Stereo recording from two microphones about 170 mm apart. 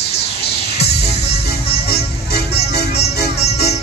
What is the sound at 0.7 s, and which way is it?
Music, 75° left (ahead or behind).